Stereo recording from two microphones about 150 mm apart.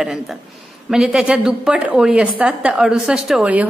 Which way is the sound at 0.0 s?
5° right (ahead or behind).